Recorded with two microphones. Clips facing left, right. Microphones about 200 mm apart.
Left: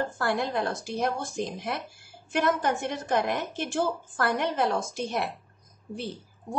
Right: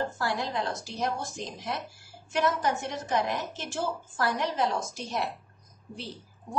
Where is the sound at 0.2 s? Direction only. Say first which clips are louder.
Left 3 dB; 55° left (ahead or behind).